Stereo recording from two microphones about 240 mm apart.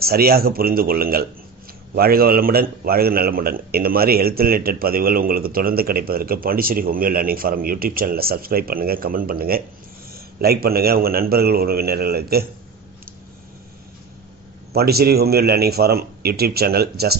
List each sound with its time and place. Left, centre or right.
0.0 s a man's voice: right
14.7 s a man's voice: right